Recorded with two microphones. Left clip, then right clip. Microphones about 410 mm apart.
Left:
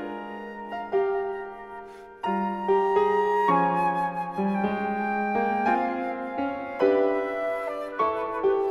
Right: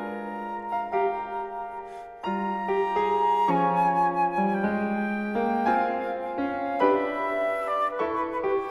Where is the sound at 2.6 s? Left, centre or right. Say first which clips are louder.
Left 4 dB; left.